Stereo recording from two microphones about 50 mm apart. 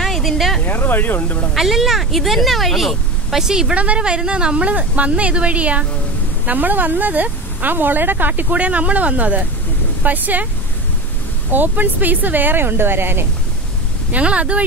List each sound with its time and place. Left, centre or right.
0.0 s a sound: centre
0.7 s speech: left
1.5 s speech: centre
3.4 s speech: centre
3.7 s speech: right
11.5 s speech: right
14.1 s speech: right